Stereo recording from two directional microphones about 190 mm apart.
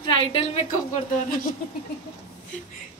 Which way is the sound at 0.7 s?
45° left (ahead or behind).